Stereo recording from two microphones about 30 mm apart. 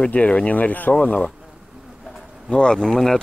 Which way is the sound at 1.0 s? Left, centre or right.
Left.